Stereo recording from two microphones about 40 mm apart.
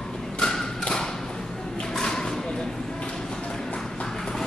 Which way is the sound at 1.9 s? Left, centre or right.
Centre.